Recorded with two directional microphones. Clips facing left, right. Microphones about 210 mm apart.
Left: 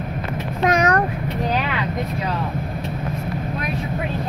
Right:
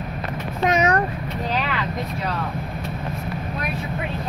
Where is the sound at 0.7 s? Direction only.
5° right (ahead or behind).